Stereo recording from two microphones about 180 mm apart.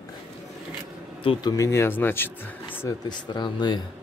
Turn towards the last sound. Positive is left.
turn(degrees=25)  # may be behind; listen again after turning